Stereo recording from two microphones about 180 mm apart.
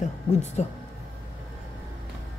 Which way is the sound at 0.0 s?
40° left (ahead or behind).